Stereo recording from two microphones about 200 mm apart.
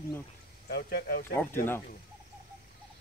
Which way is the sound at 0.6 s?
50° left (ahead or behind).